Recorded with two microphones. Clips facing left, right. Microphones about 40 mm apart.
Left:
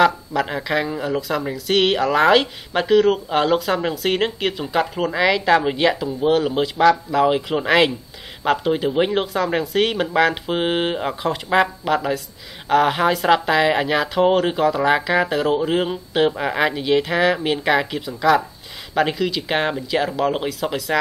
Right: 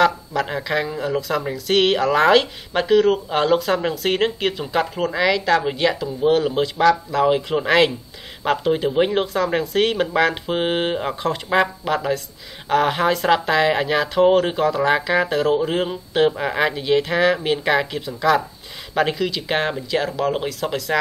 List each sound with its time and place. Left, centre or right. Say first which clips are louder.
0.0 s speech: left 1 dB; centre